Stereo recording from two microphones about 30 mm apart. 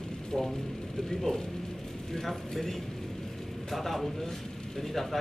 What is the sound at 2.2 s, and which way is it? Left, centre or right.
A man's voice, centre.